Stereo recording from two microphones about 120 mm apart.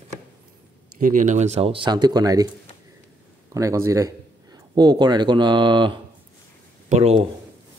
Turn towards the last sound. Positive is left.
turn(degrees=-60)  # may be behind; listen again after turning